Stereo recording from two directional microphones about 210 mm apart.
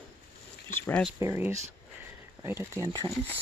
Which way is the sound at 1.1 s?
10° right (ahead or behind).